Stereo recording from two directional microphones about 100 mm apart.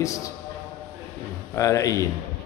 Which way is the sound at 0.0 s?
30° left (ahead or behind).